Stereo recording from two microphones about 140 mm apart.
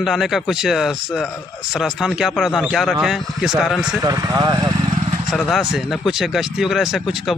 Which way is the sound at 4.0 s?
25° right (ahead or behind).